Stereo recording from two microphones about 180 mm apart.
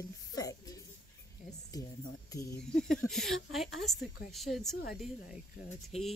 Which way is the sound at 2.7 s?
Centre (ahead or behind).